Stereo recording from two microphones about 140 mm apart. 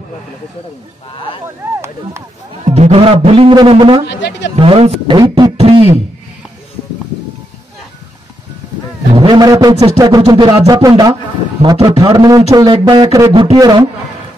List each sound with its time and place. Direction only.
2.6 s speech: 50° right (ahead or behind)
5.1 s speech: 30° right (ahead or behind)
5.6 s beatboxing: 45° right (ahead or behind)
9.1 s a sound: 35° right (ahead or behind)
9.9 s speech: 25° right (ahead or behind)
13.3 s speech: 40° right (ahead or behind)